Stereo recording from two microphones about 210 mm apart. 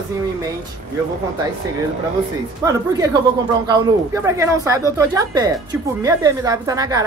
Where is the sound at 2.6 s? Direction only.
15° right (ahead or behind).